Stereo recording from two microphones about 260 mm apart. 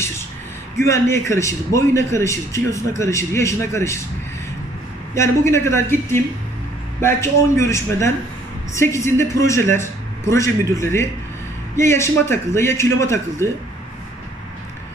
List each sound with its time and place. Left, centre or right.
0.7 s a man's voice: centre
5.1 s a man's voice: centre